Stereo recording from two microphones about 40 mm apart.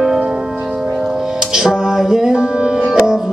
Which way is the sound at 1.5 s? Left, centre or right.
Centre.